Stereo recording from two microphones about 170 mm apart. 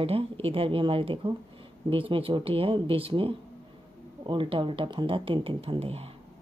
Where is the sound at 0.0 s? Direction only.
35° right (ahead or behind).